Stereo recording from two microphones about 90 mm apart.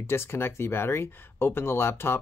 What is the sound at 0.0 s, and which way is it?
Speech, 25° left (ahead or behind).